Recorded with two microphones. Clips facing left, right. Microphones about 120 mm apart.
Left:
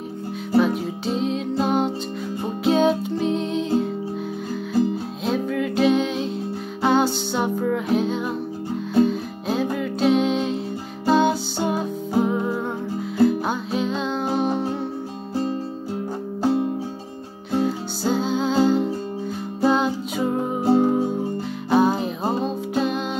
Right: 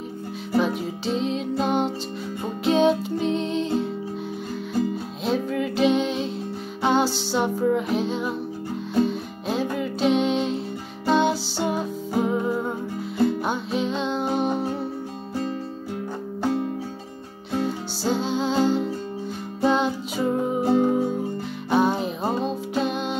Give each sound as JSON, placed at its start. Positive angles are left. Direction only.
{"t": 0.6, "sound": "music", "side_deg": 0}
{"t": 5.2, "sound": "music", "side_deg": 0}
{"t": 17.6, "sound": "music", "side_deg": 0}
{"t": 20.6, "sound": "music", "side_deg": 35}
{"t": 21.6, "sound": "music", "side_deg": 0}